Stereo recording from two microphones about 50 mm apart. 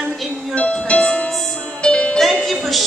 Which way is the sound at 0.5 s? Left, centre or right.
Centre.